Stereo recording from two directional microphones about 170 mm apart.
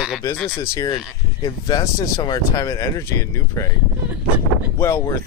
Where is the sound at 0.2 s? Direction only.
20° left (ahead or behind).